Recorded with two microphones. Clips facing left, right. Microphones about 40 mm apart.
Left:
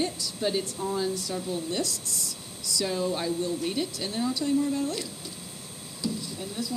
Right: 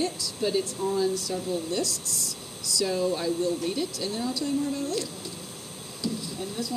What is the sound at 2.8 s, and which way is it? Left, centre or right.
Speech, centre.